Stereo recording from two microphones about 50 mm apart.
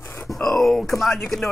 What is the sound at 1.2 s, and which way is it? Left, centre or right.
Chopping, centre.